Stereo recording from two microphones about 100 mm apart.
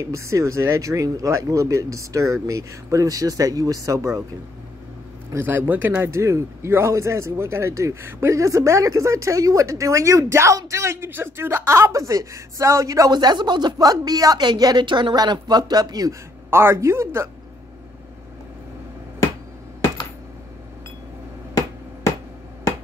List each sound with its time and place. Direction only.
0.0 s a man's voice: 30° right (ahead or behind)
5.3 s a man's voice: 25° right (ahead or behind); by 16.2 s 40° right (ahead or behind)
16.4 s a man's voice: 25° right (ahead or behind)